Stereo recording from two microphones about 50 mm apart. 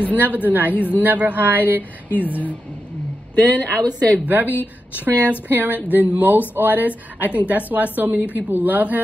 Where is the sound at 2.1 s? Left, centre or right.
Left.